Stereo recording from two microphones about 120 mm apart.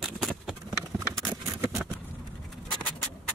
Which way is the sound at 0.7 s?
30° right (ahead or behind).